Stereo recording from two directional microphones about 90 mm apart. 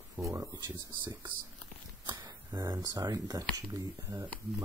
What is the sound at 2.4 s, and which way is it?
Speech, 45° right (ahead or behind).